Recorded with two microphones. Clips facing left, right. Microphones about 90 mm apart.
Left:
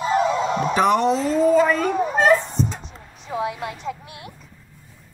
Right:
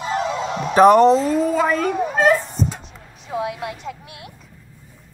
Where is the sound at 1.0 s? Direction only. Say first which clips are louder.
Right 4 dB; centre (ahead or behind).